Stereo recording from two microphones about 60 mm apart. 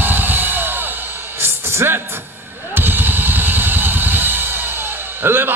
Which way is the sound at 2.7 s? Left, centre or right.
Right.